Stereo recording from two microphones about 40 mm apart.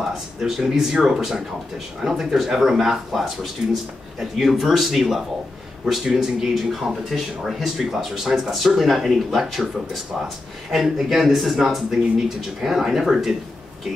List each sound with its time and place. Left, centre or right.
0.4 s speech: centre